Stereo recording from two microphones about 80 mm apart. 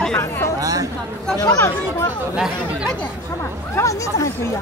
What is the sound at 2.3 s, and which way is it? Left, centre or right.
Speech, centre.